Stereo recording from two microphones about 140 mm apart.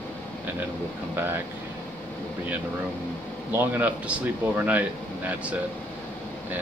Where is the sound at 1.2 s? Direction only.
15° right (ahead or behind).